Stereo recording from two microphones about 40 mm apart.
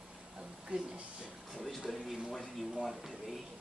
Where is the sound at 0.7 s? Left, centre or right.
Right.